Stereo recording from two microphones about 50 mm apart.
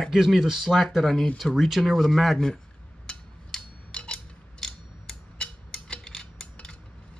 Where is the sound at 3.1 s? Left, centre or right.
Centre.